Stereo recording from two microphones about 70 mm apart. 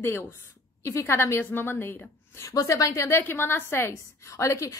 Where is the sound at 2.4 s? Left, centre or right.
Left.